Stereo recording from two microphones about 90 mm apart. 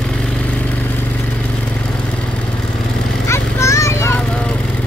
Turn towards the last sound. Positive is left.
turn(degrees=30)  # may be behind; listen again after turning